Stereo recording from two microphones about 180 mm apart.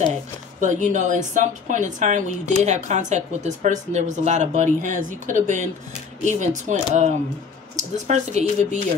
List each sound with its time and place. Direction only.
0.1 s a woman's voice: 45° right (ahead or behind)